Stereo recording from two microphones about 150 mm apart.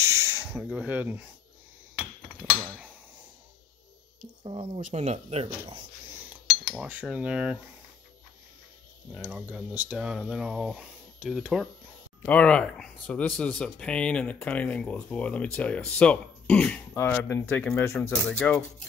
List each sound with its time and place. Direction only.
0.0 s a sound: 20° right (ahead or behind)
0.5 s speech: 5° right (ahead or behind)
4.2 s speech: 45° right (ahead or behind)
6.7 s speech: 5° right (ahead or behind)
9.1 s speech: 10° right (ahead or behind)
12.3 s speech: 10° left (ahead or behind)